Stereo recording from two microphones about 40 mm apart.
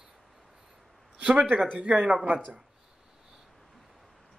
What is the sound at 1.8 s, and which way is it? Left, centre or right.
Speech, right.